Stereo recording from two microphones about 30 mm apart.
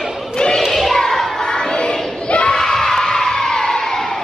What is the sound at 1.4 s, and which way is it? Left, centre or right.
Crowd, left.